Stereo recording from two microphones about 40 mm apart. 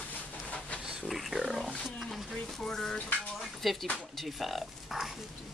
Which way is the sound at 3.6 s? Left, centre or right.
Centre.